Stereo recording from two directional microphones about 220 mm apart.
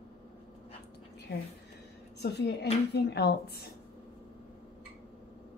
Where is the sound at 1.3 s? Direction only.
45° left (ahead or behind).